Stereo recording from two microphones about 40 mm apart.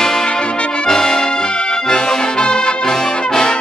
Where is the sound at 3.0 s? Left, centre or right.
Centre.